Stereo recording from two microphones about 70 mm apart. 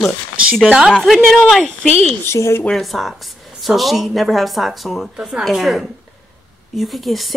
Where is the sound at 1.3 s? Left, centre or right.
Centre.